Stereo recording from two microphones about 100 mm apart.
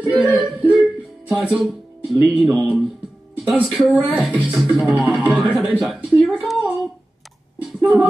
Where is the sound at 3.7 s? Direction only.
Centre (ahead or behind).